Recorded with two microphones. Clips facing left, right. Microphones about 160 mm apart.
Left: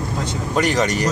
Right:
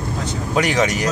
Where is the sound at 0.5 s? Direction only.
Centre (ahead or behind).